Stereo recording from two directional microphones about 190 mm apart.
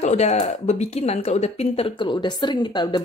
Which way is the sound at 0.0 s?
40° left (ahead or behind).